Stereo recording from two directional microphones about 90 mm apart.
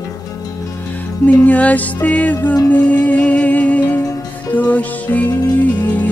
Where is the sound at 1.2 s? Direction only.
15° left (ahead or behind).